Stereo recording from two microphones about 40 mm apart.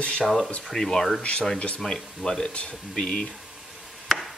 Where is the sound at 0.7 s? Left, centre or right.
Centre.